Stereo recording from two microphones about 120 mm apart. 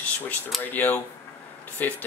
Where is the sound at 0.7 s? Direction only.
15° left (ahead or behind).